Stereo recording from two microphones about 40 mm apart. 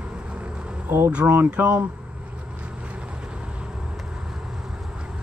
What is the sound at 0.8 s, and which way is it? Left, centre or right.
Speech, right.